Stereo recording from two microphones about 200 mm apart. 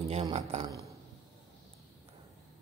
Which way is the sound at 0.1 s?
30° right (ahead or behind).